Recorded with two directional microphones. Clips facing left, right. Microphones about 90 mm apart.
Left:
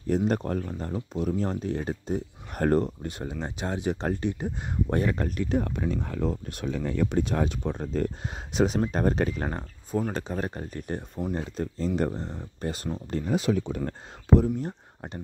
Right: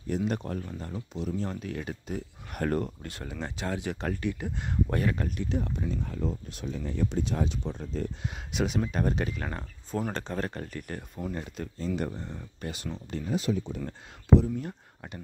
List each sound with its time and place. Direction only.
0.1 s speech: 40° left (ahead or behind)
1.5 s speech: 30° left (ahead or behind)
3.0 s speech: 20° left (ahead or behind)
5.2 s speech: 50° left (ahead or behind)
8.5 s speech: 40° left (ahead or behind)
10.1 s speech: 10° left (ahead or behind); by 12.9 s 40° left (ahead or behind)
13.3 s speech: 90° left
13.7 s speech: 50° left (ahead or behind)